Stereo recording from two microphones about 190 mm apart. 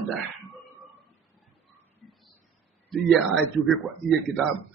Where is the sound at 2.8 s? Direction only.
Centre (ahead or behind).